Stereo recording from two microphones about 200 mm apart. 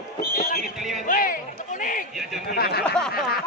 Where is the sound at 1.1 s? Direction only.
45° left (ahead or behind).